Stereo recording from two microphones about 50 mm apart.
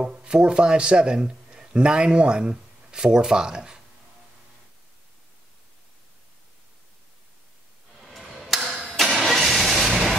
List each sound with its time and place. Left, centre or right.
0.0 s a man's voice: centre
8.0 s a sound: centre
9.2 s music: centre